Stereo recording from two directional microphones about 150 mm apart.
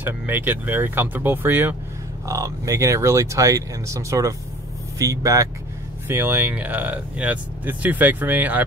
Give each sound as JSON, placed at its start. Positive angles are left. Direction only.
{"t": 0.0, "sound": "speech", "side_deg": -10}
{"t": 2.2, "sound": "speech", "side_deg": -25}